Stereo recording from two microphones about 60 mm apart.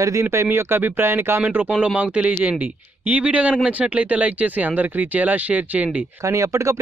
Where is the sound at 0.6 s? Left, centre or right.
Right.